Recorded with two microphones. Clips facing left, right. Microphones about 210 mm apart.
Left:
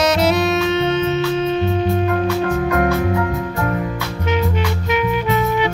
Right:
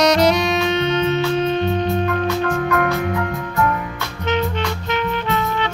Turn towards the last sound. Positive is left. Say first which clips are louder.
# left 4 dB
turn(degrees=10)  # may be behind; listen again after turning